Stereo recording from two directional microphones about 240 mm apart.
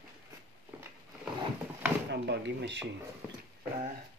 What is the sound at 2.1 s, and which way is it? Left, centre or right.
Speech, right.